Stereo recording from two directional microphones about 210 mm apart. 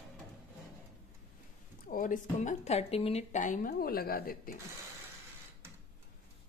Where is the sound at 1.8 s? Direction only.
40° left (ahead or behind).